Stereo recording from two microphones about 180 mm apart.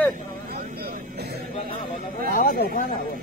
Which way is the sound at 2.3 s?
55° left (ahead or behind).